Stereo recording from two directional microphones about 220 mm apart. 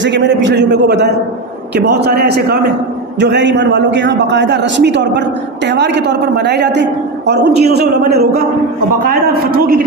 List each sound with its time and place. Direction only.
0.0 s a man's voice: 55° right (ahead or behind)